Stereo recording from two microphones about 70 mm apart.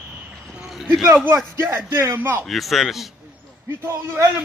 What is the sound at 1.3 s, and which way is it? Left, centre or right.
A man's voice, right.